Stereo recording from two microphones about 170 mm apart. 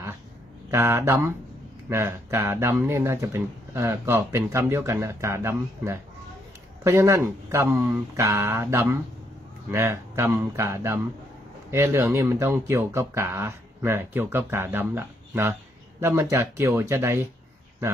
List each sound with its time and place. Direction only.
0.7 s speech: 15° right (ahead or behind)